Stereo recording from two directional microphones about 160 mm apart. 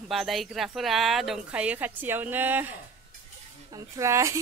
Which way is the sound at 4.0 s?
20° right (ahead or behind).